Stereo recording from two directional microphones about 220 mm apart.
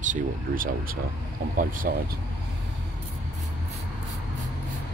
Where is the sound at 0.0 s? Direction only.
35° right (ahead or behind).